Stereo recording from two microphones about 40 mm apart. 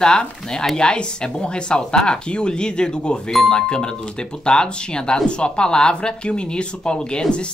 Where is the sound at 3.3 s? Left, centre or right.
Centre.